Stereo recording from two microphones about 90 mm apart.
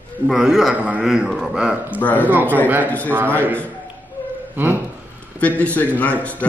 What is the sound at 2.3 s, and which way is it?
A man's voice, 20° right (ahead or behind).